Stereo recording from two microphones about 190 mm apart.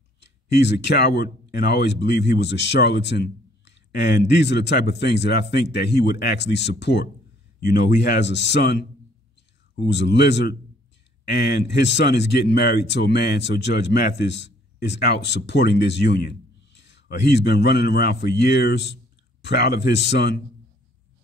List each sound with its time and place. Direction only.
0.2 s speech: 65° left (ahead or behind)